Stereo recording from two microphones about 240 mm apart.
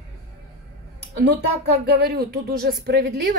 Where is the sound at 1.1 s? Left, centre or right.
Right.